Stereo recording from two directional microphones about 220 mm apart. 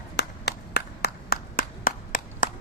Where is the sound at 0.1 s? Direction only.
50° left (ahead or behind).